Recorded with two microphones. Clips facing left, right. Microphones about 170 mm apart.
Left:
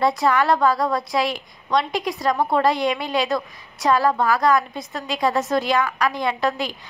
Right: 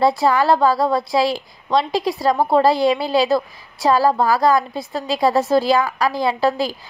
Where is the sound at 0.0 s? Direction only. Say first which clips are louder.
Right 3 dB; 30° right (ahead or behind).